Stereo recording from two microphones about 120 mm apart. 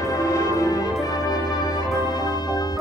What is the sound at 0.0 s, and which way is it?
Music, 30° left (ahead or behind).